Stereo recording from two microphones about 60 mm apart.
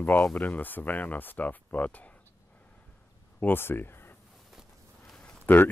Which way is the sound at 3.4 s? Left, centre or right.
Left.